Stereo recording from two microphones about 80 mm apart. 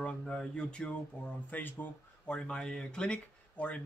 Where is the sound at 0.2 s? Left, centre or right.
Centre.